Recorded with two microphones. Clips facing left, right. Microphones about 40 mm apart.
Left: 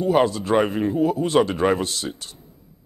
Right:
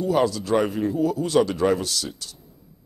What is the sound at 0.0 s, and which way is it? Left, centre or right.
A man's voice, left.